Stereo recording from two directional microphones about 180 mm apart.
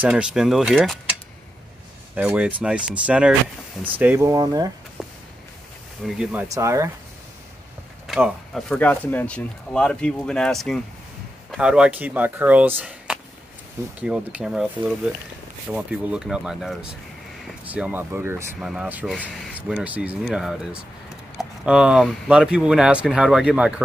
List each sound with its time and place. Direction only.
0.0 s speech: 5° right (ahead or behind)
2.1 s speech: 5° right (ahead or behind)
5.0 s a sound: centre (ahead or behind)
6.0 s speech: 5° right (ahead or behind)
6.5 s speech: 15° right (ahead or behind)
8.1 s speech: centre (ahead or behind)